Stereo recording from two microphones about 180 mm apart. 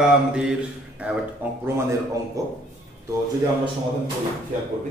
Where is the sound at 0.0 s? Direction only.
5° right (ahead or behind).